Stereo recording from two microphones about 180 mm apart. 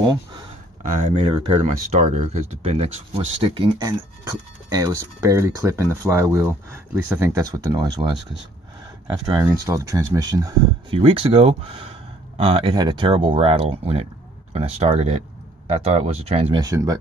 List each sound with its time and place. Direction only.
1.1 s speech: 30° right (ahead or behind)
9.4 s speech: 15° right (ahead or behind)